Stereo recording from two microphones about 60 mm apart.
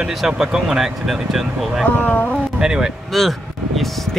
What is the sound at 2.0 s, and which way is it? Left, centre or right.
Speech, left.